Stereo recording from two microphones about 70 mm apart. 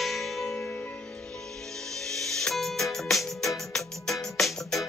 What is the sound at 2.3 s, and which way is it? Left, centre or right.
Music, centre.